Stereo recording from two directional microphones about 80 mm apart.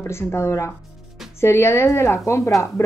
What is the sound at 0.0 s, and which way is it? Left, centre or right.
Speech, left.